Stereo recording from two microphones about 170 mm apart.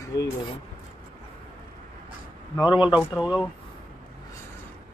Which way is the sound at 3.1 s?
Centre (ahead or behind).